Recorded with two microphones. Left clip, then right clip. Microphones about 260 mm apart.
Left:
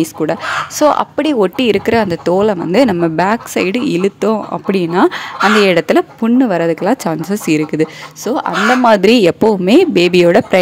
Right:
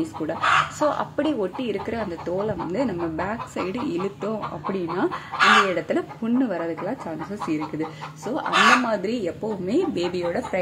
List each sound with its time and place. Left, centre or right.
0.3 s speech: left